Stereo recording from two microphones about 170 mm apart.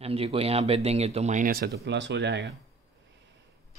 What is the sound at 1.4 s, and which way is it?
Speech, 65° right (ahead or behind).